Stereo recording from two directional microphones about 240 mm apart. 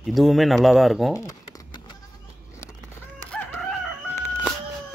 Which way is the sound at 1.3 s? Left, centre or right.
Centre.